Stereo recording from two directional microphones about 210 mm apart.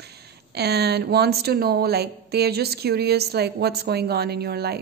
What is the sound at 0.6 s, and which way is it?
Speech, 50° right (ahead or behind).